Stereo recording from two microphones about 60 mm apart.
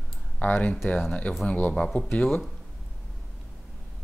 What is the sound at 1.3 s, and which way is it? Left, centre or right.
Speech, left.